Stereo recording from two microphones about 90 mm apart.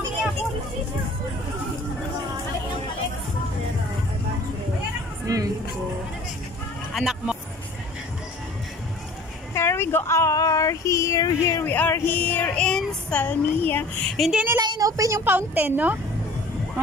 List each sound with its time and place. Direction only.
5.2 s music: 40° right (ahead or behind)
6.9 s a sound: 5° right (ahead or behind)
9.5 s speech: 30° left (ahead or behind)
11.6 s speech: 20° left (ahead or behind)
12.6 s child singing: 10° left (ahead or behind)
13.2 s speech: 20° left (ahead or behind)
14.0 s speech: centre (ahead or behind)
14.6 s a woman's voice: 45° right (ahead or behind)
15.2 s a woman's voice: 20° right (ahead or behind)